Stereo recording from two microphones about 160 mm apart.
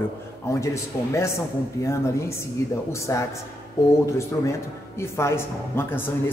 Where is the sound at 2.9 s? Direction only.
20° left (ahead or behind).